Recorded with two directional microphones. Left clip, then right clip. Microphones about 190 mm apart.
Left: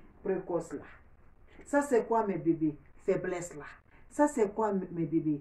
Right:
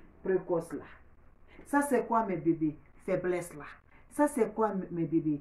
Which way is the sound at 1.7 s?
15° right (ahead or behind).